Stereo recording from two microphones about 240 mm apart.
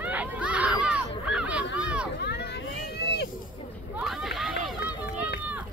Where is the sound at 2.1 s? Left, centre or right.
Left.